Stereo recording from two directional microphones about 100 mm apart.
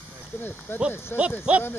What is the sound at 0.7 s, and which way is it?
Speech, 20° left (ahead or behind).